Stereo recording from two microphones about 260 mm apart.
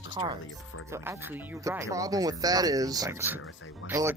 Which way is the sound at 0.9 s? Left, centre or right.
Centre.